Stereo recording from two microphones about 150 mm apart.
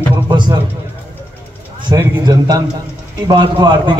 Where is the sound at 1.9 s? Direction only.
25° right (ahead or behind).